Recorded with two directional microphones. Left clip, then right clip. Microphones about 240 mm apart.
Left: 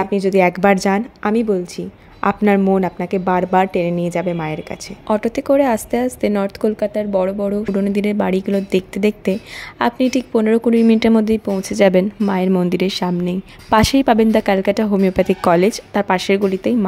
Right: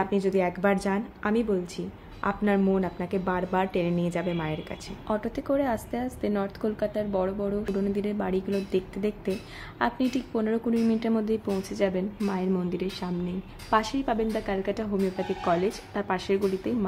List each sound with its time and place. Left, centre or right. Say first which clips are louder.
0.0 s a woman's voice: left 11 dB; left